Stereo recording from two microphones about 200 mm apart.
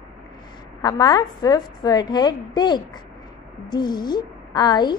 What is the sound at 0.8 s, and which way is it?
A woman's voice, 20° left (ahead or behind).